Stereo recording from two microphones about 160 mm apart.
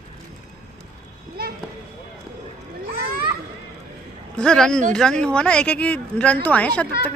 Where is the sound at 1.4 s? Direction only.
70° right (ahead or behind).